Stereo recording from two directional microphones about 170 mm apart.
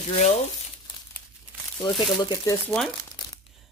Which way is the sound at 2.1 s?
20° left (ahead or behind).